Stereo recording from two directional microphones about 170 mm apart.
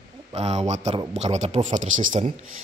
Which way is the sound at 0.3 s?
40° right (ahead or behind).